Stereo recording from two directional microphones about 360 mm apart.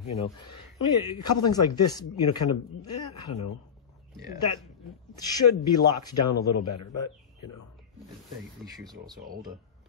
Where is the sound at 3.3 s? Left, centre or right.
Left.